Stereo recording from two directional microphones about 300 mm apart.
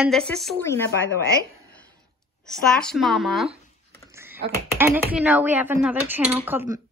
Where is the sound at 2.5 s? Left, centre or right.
Centre.